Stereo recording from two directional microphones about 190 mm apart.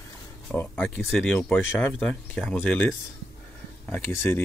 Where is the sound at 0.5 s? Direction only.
10° left (ahead or behind).